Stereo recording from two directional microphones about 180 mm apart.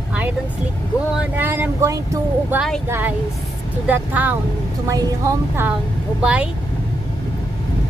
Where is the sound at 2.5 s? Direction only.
Centre (ahead or behind).